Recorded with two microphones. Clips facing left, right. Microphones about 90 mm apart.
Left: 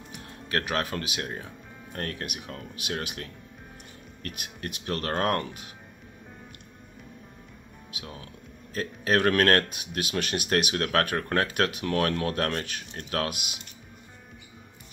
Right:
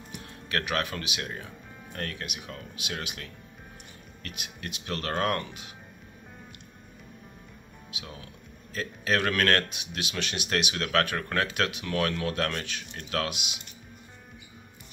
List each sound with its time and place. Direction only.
0.5 s speech: 30° left (ahead or behind)
7.9 s speech: 40° left (ahead or behind)